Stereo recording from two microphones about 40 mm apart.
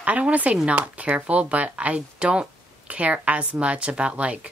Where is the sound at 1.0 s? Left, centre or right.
Right.